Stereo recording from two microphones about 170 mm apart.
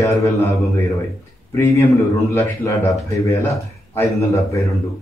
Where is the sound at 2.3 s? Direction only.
15° left (ahead or behind).